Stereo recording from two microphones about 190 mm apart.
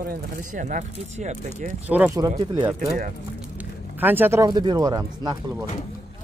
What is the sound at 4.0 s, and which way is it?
Speech, 10° right (ahead or behind).